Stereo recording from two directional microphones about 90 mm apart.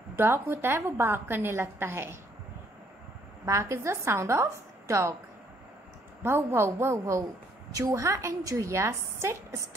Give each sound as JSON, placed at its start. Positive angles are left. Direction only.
{"t": 0.2, "sound": "a woman's voice", "side_deg": -25}
{"t": 3.4, "sound": "a woman's voice", "side_deg": -35}
{"t": 6.2, "sound": "a woman's voice", "side_deg": -30}